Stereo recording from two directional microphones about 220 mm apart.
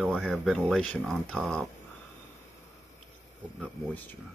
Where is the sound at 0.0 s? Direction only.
5° right (ahead or behind).